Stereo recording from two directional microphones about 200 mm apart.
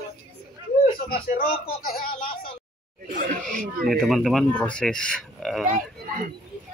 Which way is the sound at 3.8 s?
Centre (ahead or behind).